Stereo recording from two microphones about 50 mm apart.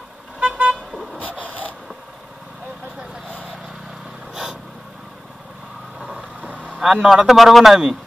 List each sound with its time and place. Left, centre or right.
0.4 s vehicle: right
1.4 s a sound: left
6.1 s vehicle: right
6.8 s a man's voice: centre